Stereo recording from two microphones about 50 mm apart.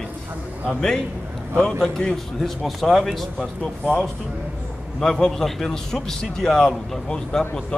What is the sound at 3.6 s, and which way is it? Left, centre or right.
Speech, left.